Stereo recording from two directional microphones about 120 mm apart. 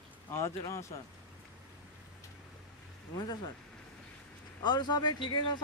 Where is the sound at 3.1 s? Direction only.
40° left (ahead or behind).